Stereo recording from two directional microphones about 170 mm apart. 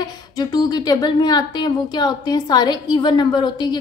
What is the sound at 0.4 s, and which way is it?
Speech, 25° left (ahead or behind).